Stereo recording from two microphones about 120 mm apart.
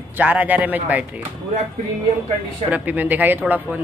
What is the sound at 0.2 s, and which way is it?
Speech, 15° right (ahead or behind).